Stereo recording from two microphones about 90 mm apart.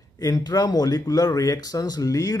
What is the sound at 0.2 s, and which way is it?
Speech, 50° left (ahead or behind).